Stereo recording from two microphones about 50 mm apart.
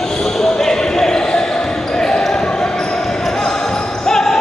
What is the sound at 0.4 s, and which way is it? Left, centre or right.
Basketball bounce, centre.